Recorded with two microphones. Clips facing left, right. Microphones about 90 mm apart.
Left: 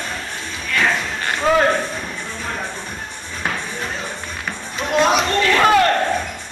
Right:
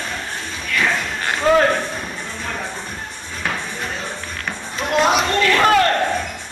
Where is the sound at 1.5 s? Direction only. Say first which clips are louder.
Right 2 dB; 10° left (ahead or behind).